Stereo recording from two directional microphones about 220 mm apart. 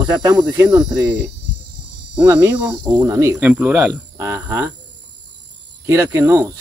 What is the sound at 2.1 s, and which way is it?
Speech, 15° right (ahead or behind).